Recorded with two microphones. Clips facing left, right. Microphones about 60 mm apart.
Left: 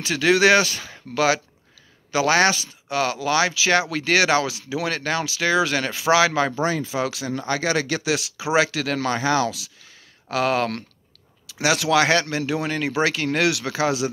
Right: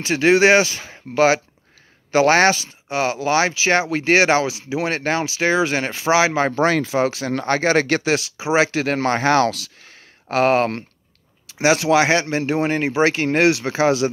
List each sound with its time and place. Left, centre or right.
0.0 s speech: right
6.5 s speech: right
7.0 s speech: right
7.2 s speech: right
8.5 s speech: right
10.3 s speech: right